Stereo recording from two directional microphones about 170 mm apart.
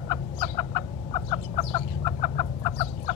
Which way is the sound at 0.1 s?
25° left (ahead or behind).